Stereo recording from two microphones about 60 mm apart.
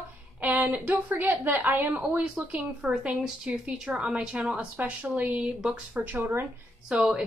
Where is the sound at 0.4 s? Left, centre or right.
Right.